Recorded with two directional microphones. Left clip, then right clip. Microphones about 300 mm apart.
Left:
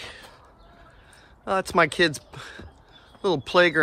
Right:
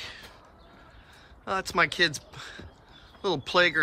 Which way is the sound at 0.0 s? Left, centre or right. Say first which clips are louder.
Left 1 dB; centre.